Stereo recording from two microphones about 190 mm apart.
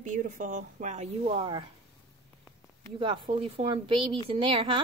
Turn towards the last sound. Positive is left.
turn(degrees=-25)  # may be behind; listen again after turning